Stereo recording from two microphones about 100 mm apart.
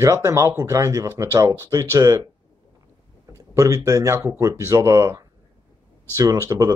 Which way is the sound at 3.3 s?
35° right (ahead or behind).